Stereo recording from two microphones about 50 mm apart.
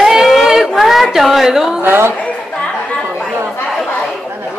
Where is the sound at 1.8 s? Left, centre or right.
Right.